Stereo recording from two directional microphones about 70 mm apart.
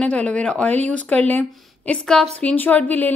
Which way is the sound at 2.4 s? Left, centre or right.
Left.